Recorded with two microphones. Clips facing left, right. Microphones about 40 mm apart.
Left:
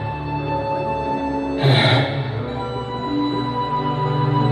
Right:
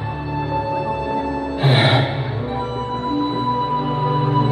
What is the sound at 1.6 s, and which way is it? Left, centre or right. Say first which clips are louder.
Music: right 1 dB; centre.